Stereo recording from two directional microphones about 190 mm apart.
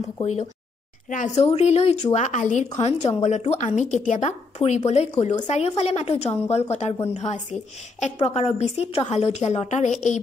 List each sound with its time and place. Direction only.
0.2 s a woman's voice: 35° left (ahead or behind)
8.0 s a woman's voice: 35° left (ahead or behind)